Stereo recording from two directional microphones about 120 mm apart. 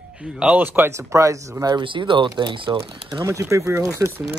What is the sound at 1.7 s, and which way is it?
Speech, 40° right (ahead or behind).